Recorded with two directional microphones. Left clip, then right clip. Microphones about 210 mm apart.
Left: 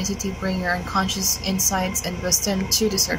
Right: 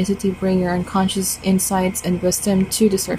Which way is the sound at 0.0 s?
15° right (ahead or behind).